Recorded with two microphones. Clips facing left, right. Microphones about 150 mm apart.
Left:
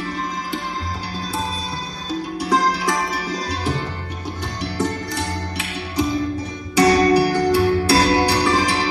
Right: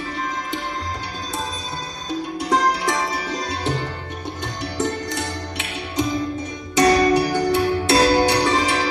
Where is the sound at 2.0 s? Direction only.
20° right (ahead or behind).